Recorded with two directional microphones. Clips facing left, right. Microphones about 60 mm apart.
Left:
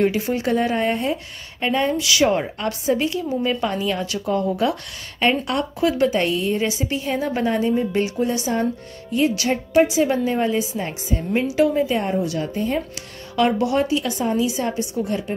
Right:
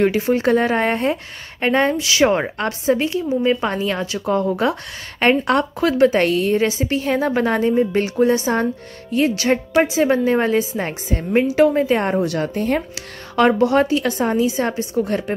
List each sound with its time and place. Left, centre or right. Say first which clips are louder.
0.0 s a woman's voice: right 4 dB; right
12.1 s a woman's voice: right 3 dB; right
13.4 s a woman's voice: right 4 dB; right